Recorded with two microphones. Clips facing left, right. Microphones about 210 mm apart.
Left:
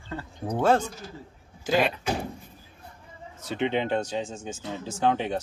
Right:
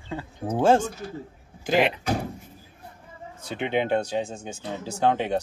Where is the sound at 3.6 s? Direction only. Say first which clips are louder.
Right 1 dB; 10° right (ahead or behind).